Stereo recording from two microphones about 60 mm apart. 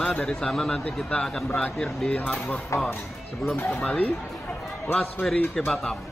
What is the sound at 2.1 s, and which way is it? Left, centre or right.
Speech, left.